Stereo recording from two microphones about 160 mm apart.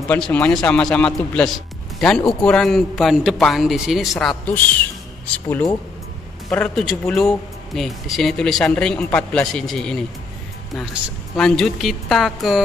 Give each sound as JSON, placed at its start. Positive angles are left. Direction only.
{"t": 0.1, "sound": "speech", "side_deg": 5}
{"t": 5.5, "sound": "speech", "side_deg": 20}
{"t": 6.5, "sound": "speech", "side_deg": 5}